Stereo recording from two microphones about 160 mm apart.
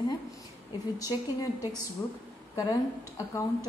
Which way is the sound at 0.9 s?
20° left (ahead or behind).